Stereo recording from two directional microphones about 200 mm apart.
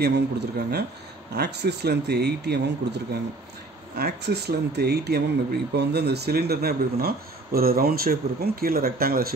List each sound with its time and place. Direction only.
0.0 s speech: 55° right (ahead or behind)